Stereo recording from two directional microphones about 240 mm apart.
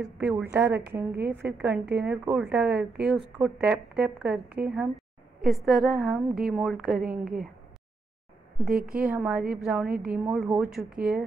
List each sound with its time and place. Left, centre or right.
0.0 s a woman's voice: centre
4.5 s a woman's voice: right
4.7 s a woman's voice: centre
8.9 s a woman's voice: centre